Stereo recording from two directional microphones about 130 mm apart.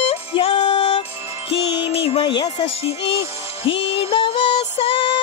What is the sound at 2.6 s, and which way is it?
Music, 50° left (ahead or behind).